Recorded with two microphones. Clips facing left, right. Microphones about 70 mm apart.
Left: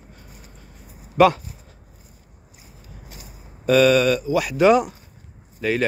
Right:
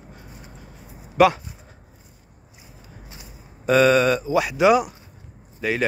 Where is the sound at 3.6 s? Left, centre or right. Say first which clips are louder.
Left 1 dB; right.